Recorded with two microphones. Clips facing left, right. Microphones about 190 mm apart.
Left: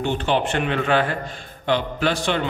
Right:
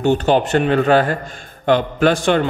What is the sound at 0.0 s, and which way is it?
A man's voice, 40° right (ahead or behind).